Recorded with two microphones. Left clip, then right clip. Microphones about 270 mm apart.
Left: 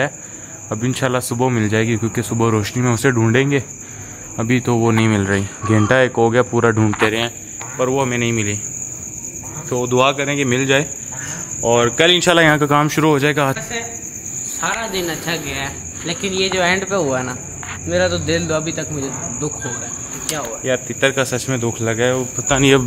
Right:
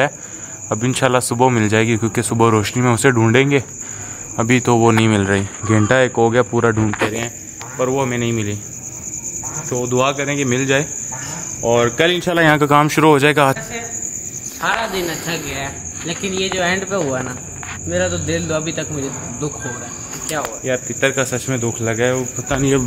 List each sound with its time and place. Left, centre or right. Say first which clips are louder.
0.7 s speech: right 3 dB; right
5.4 s speech: even; centre
9.7 s cricket: left 2 dB; centre
11.6 s speech: left 1 dB; centre
12.4 s speech: right 1 dB; centre
14.6 s speech: right 2 dB; centre
17.9 s cricket: left 3 dB; centre
18.4 s speech: even; centre
20.6 s speech: left 2 dB; centre